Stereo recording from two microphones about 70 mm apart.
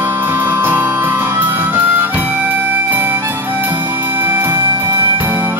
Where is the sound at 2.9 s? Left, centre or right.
Right.